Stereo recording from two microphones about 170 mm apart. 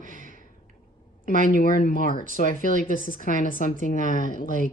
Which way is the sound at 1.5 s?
60° left (ahead or behind).